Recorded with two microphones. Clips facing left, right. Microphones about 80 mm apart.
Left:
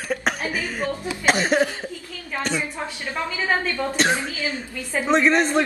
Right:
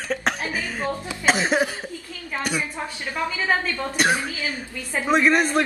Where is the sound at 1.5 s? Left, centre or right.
Centre.